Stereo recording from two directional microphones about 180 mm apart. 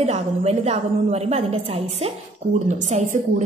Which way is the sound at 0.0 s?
35° right (ahead or behind).